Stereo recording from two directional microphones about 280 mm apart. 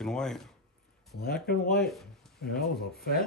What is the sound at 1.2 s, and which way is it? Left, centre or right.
Speech, left.